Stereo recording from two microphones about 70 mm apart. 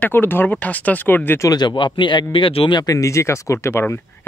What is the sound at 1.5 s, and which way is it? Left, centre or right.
Speech, left.